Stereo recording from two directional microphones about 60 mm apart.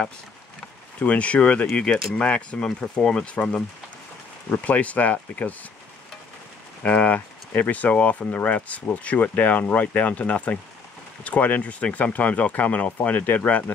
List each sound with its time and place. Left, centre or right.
0.9 s speech: left
6.8 s speech: left